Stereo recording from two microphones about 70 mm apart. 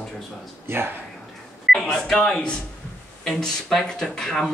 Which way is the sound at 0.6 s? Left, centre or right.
Right.